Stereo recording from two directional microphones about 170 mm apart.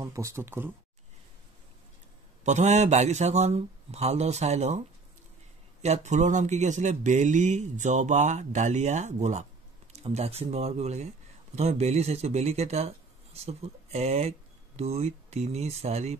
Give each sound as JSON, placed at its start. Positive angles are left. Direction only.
{"t": 0.0, "sound": "speech", "side_deg": -15}
{"t": 2.4, "sound": "a man's voice", "side_deg": -45}